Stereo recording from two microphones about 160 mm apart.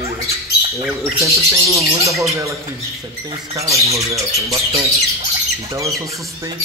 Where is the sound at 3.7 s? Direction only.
20° right (ahead or behind).